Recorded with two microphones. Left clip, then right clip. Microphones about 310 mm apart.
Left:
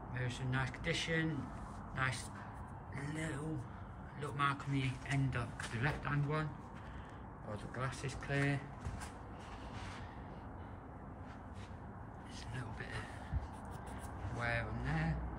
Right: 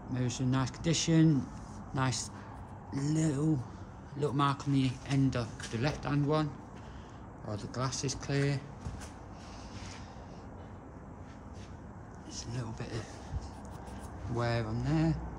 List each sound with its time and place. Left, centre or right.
0.1 s speech: centre
7.5 s speech: centre
12.4 s a sound: centre
14.4 s speech: centre